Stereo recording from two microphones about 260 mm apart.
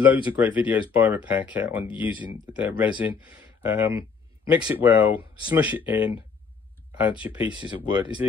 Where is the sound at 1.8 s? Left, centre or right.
Centre.